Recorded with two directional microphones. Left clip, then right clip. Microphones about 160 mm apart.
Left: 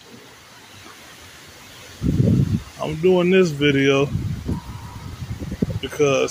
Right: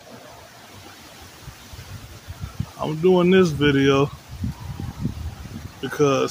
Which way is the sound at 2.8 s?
20° right (ahead or behind).